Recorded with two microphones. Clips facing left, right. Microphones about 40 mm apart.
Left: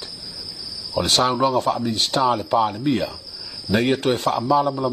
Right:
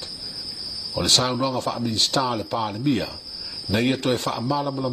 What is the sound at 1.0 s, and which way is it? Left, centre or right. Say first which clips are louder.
Speech: left 3 dB; centre.